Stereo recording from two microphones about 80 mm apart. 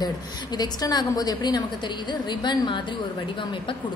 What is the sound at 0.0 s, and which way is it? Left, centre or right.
A woman's voice, left.